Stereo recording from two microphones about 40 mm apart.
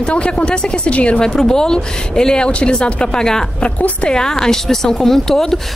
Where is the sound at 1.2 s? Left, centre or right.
Centre.